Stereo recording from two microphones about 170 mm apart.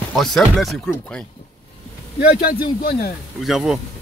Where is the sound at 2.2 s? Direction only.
60° left (ahead or behind).